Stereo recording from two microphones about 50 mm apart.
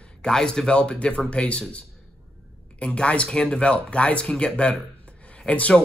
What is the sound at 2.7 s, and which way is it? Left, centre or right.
Speech, left.